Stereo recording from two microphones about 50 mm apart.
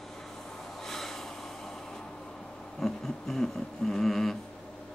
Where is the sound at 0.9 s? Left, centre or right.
Centre.